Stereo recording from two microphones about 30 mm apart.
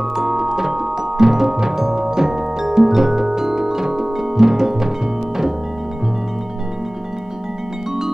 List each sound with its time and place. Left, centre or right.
0.1 s music: centre